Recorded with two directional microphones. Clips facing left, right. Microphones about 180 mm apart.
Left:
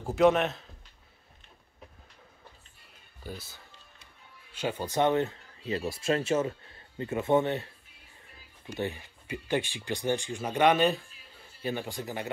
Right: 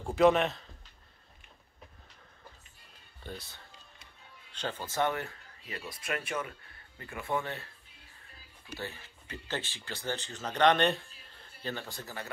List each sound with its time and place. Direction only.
0.0 s speech: centre (ahead or behind)
3.3 s speech: centre (ahead or behind)
11.6 s speech: 15° left (ahead or behind)